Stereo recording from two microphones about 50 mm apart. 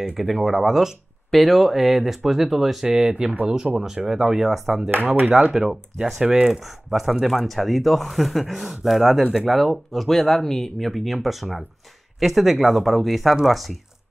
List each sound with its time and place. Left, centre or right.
0.2 s speech: centre
2.9 s speech: centre
5.2 s speech: right
5.5 s speech: centre
6.2 s speech: centre